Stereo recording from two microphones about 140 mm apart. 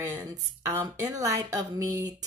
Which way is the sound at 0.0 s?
15° right (ahead or behind).